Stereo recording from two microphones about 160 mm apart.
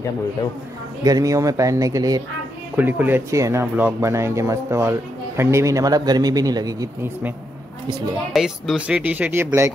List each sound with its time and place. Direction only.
1.0 s speech: 20° right (ahead or behind)
2.7 s speech: 10° right (ahead or behind)
8.3 s speech: centre (ahead or behind)